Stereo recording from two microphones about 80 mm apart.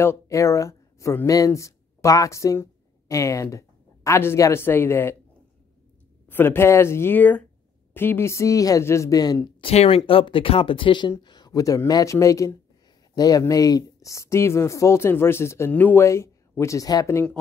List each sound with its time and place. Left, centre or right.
0.0 s speech: left
6.2 s speech: left
9.1 s speech: left
9.6 s speech: left
13.1 s speech: left
15.7 s speech: left
16.1 s speech: left
17.1 s speech: left